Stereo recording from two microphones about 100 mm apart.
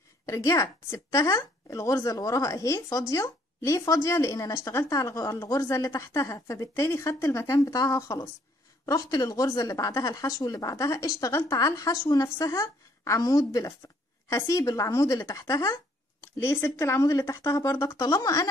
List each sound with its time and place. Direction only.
0.3 s speech: 30° left (ahead or behind)